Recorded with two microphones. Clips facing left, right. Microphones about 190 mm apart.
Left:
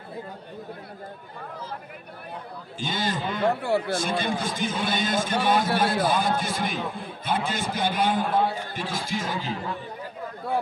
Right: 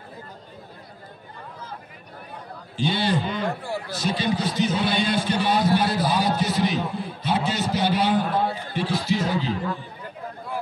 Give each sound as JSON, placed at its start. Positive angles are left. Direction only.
{"t": 2.8, "sound": "a man's voice", "side_deg": 45}